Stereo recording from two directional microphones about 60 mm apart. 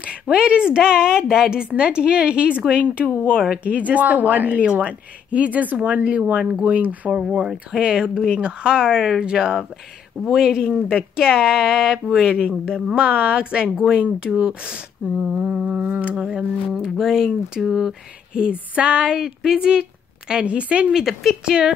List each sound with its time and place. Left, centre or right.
0.0 s a woman's voice: centre
7.1 s a woman's voice: centre
16.2 s a woman's voice: centre
20.9 s speech: centre
21.5 s a woman's voice: centre